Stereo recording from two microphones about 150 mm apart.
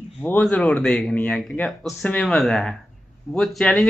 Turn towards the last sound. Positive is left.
turn(degrees=5)  # may be behind; listen again after turning